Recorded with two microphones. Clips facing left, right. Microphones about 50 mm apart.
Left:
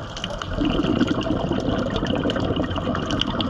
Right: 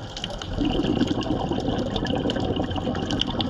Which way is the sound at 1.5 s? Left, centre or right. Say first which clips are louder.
Left 2 dB; left.